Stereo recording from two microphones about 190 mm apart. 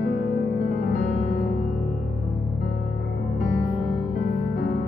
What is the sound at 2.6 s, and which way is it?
Music, 45° left (ahead or behind).